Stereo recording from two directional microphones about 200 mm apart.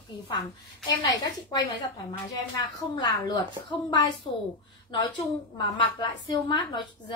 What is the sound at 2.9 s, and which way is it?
Speech, 20° left (ahead or behind).